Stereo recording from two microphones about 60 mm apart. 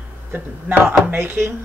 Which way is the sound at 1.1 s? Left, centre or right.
Right.